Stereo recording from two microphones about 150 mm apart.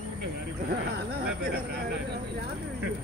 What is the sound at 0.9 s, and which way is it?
Speech, 90° right.